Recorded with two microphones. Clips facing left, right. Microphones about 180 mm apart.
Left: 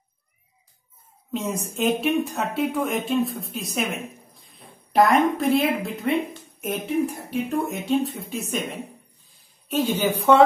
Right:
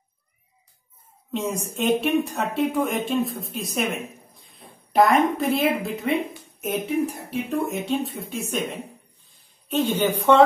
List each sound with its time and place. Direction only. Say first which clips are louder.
1.3 s a woman's voice: right 1 dB; centre (ahead or behind)